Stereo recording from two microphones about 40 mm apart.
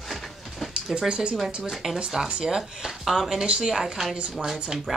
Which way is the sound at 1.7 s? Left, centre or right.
Centre.